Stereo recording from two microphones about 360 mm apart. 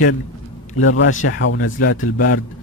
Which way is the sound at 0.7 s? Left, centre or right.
Left.